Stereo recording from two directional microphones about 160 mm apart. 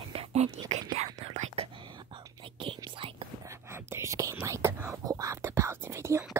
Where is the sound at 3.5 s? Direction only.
15° right (ahead or behind).